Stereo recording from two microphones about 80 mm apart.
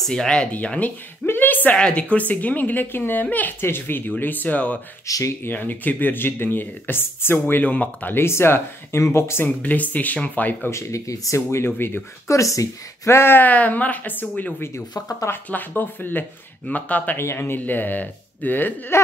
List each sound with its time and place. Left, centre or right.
0.0 s a woman's voice: centre
5.0 s speech: left
5.4 s a woman's voice: left
9.6 s a woman's voice: centre
10.7 s speech: left
12.3 s a woman's voice: left; by 14.5 s centre
15.0 s speech: left
15.2 s a woman's voice: left
17.2 s a woman's voice: left